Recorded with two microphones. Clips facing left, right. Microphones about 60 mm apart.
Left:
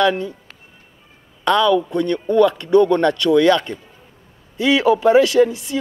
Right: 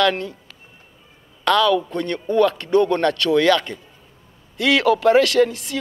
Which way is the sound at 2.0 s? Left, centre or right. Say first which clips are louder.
Left 3 dB; right.